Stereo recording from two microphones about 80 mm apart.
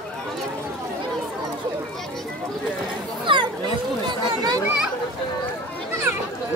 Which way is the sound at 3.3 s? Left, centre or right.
Right.